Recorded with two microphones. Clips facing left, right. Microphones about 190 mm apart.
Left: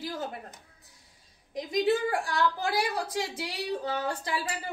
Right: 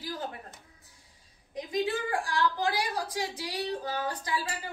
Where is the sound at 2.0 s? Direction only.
25° left (ahead or behind).